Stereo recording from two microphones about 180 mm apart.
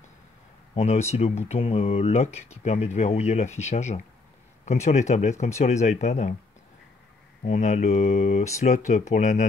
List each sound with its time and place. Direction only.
0.7 s speech: 35° left (ahead or behind)
7.4 s speech: 40° left (ahead or behind)